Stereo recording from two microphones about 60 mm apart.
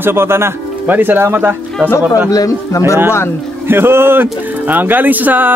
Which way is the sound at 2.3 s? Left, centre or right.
Left.